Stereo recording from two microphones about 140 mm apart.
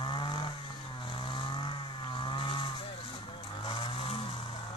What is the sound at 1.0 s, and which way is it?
Vehicle, 35° left (ahead or behind).